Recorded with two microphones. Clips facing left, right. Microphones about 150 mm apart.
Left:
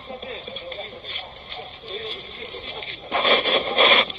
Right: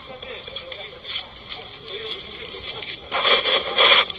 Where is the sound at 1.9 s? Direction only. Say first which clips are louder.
Even; 35° left (ahead or behind).